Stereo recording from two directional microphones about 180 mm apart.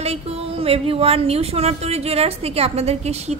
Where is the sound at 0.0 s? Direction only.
35° right (ahead or behind).